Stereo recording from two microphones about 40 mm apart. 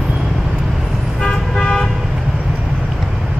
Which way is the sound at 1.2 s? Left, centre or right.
Centre.